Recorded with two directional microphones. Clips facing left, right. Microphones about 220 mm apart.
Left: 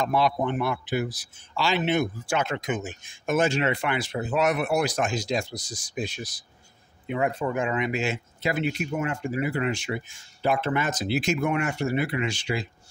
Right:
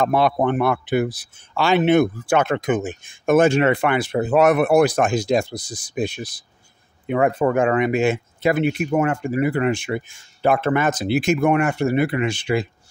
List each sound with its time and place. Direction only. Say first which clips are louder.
0.0 s a man's voice: right 6 dB; 55° right (ahead or behind)